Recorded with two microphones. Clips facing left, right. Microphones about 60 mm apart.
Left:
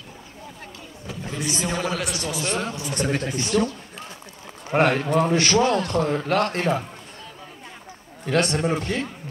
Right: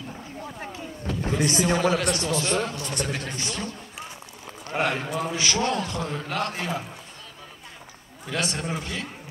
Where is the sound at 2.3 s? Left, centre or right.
Centre.